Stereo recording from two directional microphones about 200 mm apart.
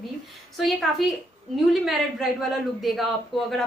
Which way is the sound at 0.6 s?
Centre (ahead or behind).